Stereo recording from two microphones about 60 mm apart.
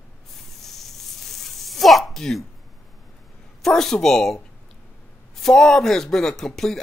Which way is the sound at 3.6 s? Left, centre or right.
Centre.